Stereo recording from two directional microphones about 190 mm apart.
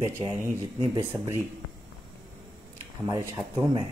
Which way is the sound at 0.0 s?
15° right (ahead or behind).